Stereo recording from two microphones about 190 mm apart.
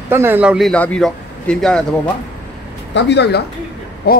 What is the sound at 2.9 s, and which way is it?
Speech, 65° left (ahead or behind).